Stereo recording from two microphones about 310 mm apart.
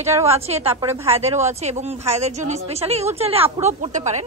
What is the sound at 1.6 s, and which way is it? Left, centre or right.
A woman's voice, right.